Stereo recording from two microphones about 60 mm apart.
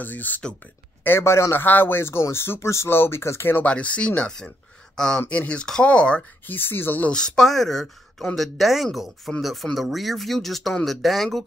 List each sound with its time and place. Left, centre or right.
0.0 s speech: left
1.2 s speech: left
1.6 s speech: left
3.6 s speech: left
5.3 s speech: left
6.4 s speech: left
7.1 s speech: centre